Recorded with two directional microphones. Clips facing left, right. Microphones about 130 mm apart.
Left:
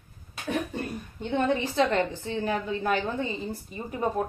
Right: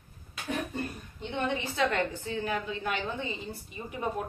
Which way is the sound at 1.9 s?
30° left (ahead or behind).